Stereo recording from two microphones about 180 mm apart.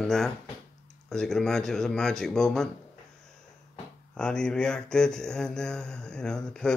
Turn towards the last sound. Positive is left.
turn(degrees=5)  # may be behind; listen again after turning